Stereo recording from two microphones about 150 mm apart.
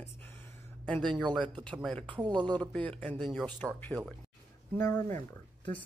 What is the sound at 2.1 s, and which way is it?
Speech, 30° right (ahead or behind).